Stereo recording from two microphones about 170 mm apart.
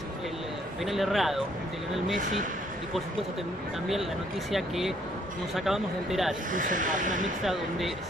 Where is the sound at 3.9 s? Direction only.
Centre (ahead or behind).